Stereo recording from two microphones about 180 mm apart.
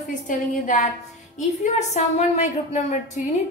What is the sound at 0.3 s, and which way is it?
Speech, 45° left (ahead or behind).